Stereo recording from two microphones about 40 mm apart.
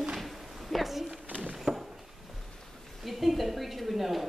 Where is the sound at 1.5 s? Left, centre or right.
Centre.